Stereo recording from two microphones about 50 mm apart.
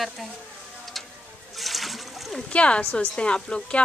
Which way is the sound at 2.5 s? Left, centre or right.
Left.